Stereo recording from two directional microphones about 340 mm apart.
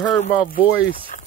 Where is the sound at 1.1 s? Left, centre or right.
Left.